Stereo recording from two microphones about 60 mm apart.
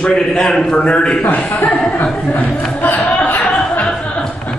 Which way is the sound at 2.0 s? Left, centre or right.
Centre.